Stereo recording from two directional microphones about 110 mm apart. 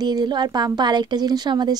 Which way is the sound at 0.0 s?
40° right (ahead or behind).